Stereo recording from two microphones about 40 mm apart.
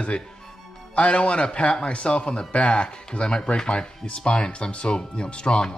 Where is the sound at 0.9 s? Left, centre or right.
Left.